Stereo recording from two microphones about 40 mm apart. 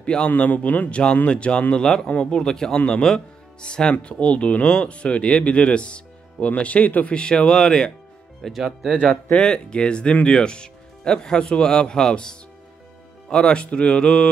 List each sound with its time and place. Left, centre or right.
0.0 s a man's voice: left
0.4 s a man's voice: left
1.3 s speech: left
2.0 s speech: left
2.4 s speech: centre; by 7.2 s left
7.2 s speech: left
8.5 s speech: centre
9.1 s speech: left
13.5 s speech: left